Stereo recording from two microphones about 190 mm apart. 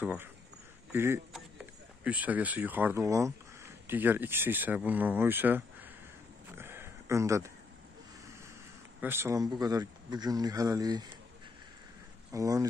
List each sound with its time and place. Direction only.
0.0 s speech: 10° right (ahead or behind)
6.5 s a sound: 10° right (ahead or behind)
9.0 s speech: 10° right (ahead or behind)
12.3 s speech: 15° right (ahead or behind)